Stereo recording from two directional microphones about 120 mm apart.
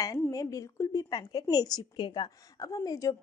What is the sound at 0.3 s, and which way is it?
A woman's voice, 30° left (ahead or behind).